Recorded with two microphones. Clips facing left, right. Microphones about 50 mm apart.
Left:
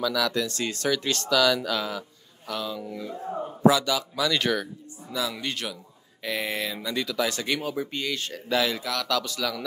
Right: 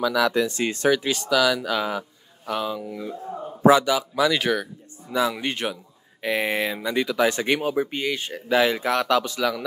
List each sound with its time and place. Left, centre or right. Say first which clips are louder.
0.0 s speech: right 5 dB; right
1.0 s speech: right 2 dB; centre
3.2 s a man's voice: left 1 dB; centre
3.6 s speech: right 4 dB; right
5.0 s a sound: right 7 dB; right
5.4 s speech: right 5 dB; right